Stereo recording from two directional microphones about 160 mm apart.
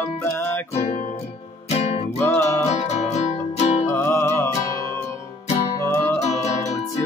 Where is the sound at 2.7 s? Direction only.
45° left (ahead or behind).